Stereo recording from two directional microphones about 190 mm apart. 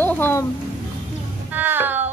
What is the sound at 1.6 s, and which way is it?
Music, 10° right (ahead or behind).